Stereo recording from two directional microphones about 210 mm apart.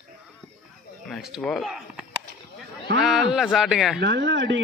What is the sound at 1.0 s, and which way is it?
Speech, centre (ahead or behind).